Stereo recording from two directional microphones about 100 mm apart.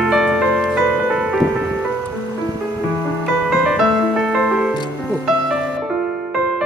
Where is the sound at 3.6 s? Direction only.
5° right (ahead or behind).